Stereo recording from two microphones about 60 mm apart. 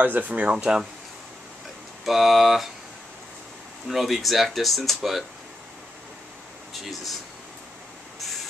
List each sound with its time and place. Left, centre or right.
0.0 s speech: right
0.5 s speech: centre
2.0 s speech: centre
3.8 s speech: centre
6.7 s speech: centre